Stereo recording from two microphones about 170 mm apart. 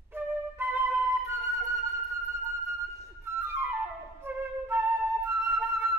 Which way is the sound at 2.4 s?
15° right (ahead or behind).